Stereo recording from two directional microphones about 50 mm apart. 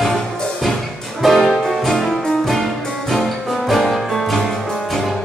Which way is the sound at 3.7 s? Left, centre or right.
Centre.